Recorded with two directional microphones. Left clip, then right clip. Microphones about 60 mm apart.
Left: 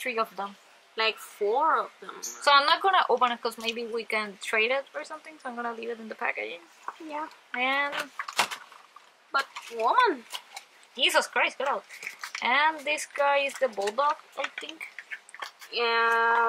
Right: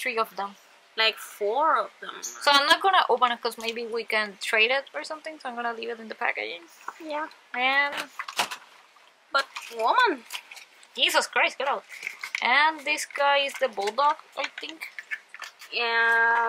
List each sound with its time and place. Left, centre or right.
0.0 s a woman's voice: right
3.3 s a woman's voice: centre
9.3 s a woman's voice: right; by 12.4 s centre
12.4 s a woman's voice: right
15.7 s speech: right